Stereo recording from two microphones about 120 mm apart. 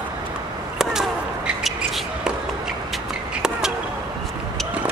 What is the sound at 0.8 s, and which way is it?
Basketball bounce, 5° right (ahead or behind).